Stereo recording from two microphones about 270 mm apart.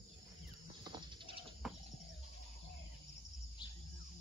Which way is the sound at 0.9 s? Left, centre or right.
Centre.